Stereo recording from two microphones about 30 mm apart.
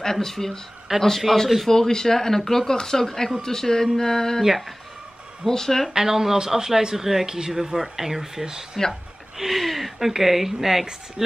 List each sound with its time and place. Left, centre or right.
0.0 s speech: centre
0.9 s a man's voice: centre
1.3 s speech: centre
4.4 s speech: centre
5.5 s speech: centre
5.9 s speech: centre
8.8 s speech: centre